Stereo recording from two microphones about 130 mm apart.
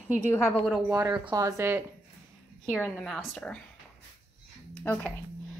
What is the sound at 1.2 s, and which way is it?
Speech, 25° right (ahead or behind).